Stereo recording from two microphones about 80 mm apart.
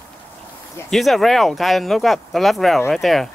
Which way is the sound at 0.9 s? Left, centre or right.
Centre.